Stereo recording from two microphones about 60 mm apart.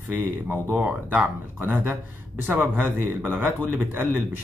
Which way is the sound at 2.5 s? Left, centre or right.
Right.